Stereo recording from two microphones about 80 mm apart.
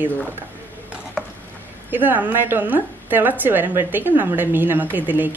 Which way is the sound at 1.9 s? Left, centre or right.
Right.